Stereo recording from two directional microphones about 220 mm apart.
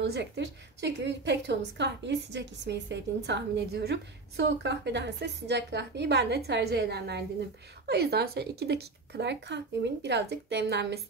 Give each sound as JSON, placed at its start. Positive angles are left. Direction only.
{"t": 0.0, "sound": "a woman's voice", "side_deg": -50}